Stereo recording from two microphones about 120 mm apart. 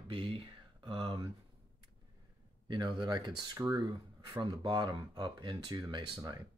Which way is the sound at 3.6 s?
20° right (ahead or behind).